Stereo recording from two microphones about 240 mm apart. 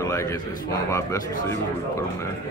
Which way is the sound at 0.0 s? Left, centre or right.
Centre.